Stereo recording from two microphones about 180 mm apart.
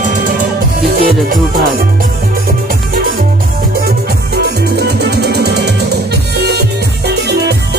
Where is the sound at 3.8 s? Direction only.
60° right (ahead or behind).